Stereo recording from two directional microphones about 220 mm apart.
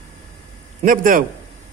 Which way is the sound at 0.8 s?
40° right (ahead or behind).